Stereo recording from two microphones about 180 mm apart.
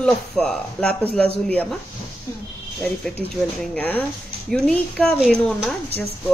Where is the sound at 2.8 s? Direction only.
Centre (ahead or behind).